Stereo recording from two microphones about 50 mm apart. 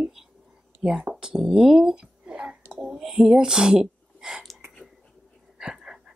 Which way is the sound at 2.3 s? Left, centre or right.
Centre.